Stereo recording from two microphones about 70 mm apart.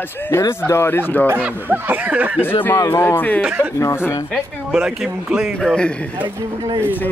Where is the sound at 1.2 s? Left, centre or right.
Right.